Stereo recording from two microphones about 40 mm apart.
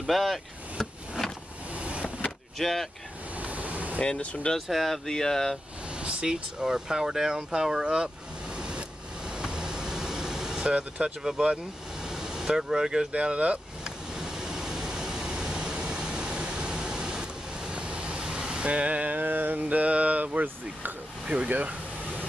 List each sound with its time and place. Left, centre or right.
0.0 s speech: centre
1.8 s vehicle: right
2.6 s speech: centre
3.3 s vehicle: right
4.2 s speech: left
4.6 s speech: centre
5.0 s speech: centre
5.9 s speech: right
8.5 s vehicle: right
10.7 s speech: right
11.2 s speech: centre
13.1 s speech: right
13.8 s vehicle: centre; by 20.4 s right
21.3 s speech: right